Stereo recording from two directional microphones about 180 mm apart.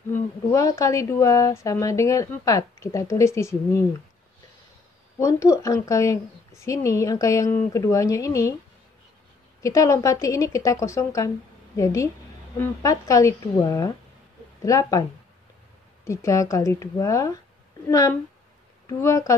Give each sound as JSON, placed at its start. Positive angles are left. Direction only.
{"t": 0.1, "sound": "a woman's voice", "side_deg": 15}
{"t": 5.2, "sound": "a woman's voice", "side_deg": 20}
{"t": 9.6, "sound": "a woman's voice", "side_deg": 15}